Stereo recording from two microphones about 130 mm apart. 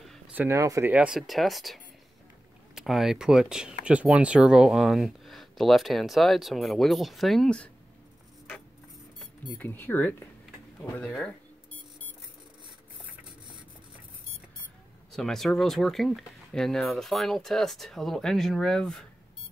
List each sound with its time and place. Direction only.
0.3 s speech: 15° right (ahead or behind)
0.9 s speech: 5° right (ahead or behind)
9.5 s speech: 15° left (ahead or behind)
15.1 s speech: 5° left (ahead or behind)